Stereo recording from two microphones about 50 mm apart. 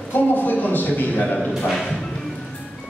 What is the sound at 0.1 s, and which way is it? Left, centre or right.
A man's voice, left.